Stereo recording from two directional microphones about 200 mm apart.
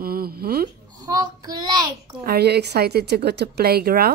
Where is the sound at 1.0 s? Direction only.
20° right (ahead or behind).